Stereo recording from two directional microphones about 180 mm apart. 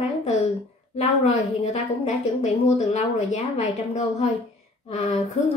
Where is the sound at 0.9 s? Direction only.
35° left (ahead or behind).